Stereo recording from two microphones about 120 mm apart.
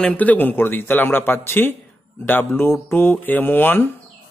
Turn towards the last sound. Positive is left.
turn(degrees=15)  # may be behind; listen again after turning